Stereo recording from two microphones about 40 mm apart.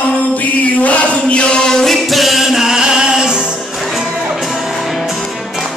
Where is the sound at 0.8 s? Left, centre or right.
Left.